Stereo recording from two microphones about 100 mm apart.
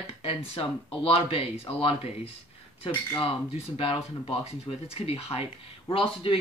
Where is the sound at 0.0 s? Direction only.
80° left.